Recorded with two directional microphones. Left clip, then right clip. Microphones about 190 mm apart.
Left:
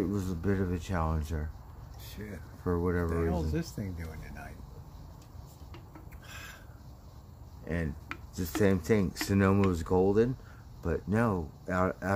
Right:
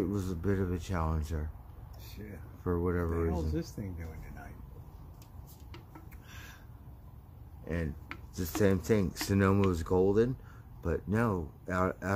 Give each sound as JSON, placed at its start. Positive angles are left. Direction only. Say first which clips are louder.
{"t": 0.0, "sound": "speech", "louder": "left 1 dB", "side_deg": 5}
{"t": 2.6, "sound": "speech", "louder": "left 1 dB", "side_deg": 5}
{"t": 3.5, "sound": "speech", "louder": "left 2 dB", "side_deg": 50}
{"t": 6.2, "sound": "a sound", "louder": "left 7 dB", "side_deg": 50}
{"t": 7.6, "sound": "speech", "louder": "left 2 dB", "side_deg": 10}